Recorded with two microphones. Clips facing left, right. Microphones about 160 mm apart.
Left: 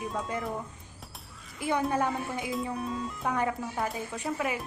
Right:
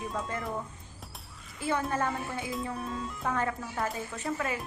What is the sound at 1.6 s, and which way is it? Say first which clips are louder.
Speech: left 2 dB; 15° left (ahead or behind).